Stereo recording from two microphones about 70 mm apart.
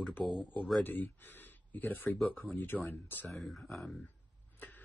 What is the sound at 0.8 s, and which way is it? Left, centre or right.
Speech, left.